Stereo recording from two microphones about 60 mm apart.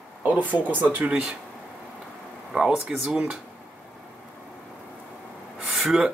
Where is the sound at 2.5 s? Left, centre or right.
Centre.